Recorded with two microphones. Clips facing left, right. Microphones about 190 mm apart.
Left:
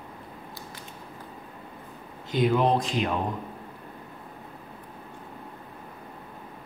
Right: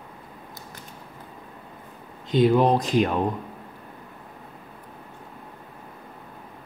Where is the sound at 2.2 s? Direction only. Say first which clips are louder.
Right 5 dB; 20° right (ahead or behind).